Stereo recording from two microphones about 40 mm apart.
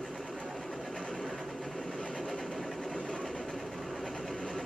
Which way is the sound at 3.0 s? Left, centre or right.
Centre.